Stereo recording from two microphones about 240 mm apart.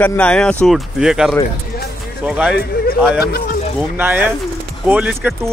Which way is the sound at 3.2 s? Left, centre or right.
Left.